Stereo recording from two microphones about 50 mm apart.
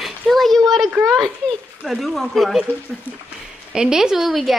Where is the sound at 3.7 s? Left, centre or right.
Centre.